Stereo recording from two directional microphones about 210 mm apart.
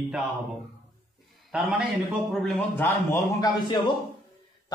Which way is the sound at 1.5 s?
5° right (ahead or behind).